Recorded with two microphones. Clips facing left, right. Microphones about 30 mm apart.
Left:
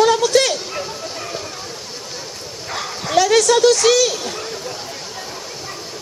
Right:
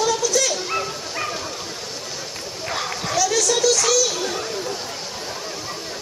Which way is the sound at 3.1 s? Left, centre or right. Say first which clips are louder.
Left 7 dB; left.